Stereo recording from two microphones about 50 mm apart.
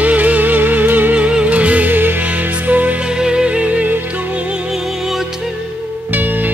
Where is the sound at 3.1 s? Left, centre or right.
Centre.